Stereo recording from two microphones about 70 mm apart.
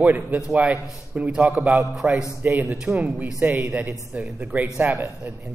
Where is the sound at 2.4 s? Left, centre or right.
Right.